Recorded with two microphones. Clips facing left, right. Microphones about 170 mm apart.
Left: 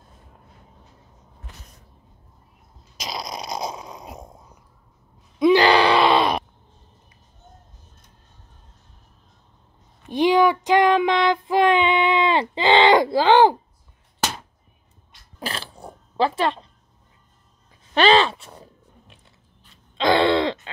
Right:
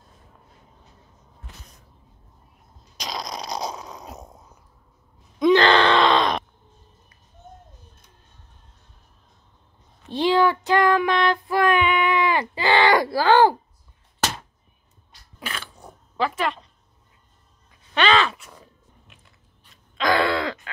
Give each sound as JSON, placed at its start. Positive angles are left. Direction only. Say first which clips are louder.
{"t": 3.0, "sound": "snoring", "louder": "even", "side_deg": 5}
{"t": 5.4, "sound": "groan", "louder": "left 1 dB", "side_deg": 10}
{"t": 10.0, "sound": "child singing", "louder": "left 2 dB", "side_deg": 15}
{"t": 15.3, "sound": "a sound", "louder": "left 4 dB", "side_deg": 35}
{"t": 17.9, "sound": "a sound", "louder": "left 4 dB", "side_deg": 35}
{"t": 19.7, "sound": "groan", "louder": "left 3 dB", "side_deg": 25}